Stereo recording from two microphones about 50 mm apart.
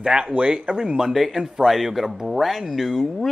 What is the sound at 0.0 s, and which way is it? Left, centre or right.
Speech, centre.